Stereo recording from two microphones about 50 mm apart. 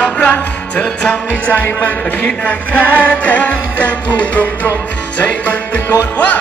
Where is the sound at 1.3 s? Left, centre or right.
Left.